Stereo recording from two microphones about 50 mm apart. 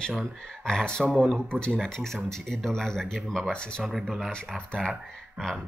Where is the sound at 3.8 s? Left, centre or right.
Centre.